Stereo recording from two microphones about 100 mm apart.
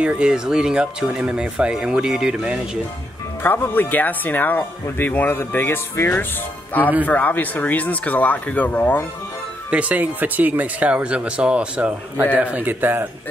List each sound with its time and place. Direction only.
0.0 s speech: 10° right (ahead or behind)
3.4 s speech: 20° left (ahead or behind)
9.7 s speech: 15° right (ahead or behind)